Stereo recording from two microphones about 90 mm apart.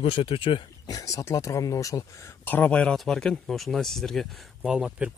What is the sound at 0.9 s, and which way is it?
Speech, 40° left (ahead or behind).